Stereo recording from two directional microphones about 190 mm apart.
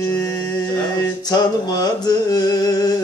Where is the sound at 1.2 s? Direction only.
20° left (ahead or behind).